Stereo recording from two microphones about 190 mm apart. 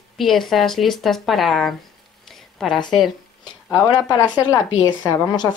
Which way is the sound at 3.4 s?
20° left (ahead or behind).